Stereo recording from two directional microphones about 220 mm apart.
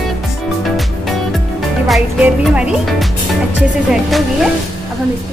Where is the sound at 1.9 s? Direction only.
5° right (ahead or behind).